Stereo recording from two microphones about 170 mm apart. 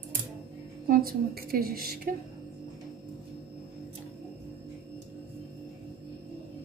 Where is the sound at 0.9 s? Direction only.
60° right (ahead or behind).